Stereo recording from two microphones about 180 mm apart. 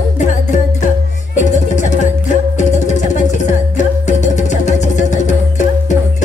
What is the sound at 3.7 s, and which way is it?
Music, 40° left (ahead or behind).